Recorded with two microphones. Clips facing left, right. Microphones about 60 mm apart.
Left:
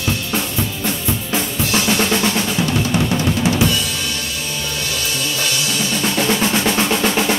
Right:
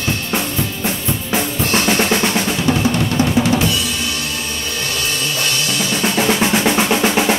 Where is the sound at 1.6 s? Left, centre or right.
Right.